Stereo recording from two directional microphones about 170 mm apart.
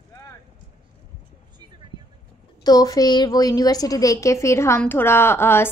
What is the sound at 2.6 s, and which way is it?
A woman's voice, 20° left (ahead or behind).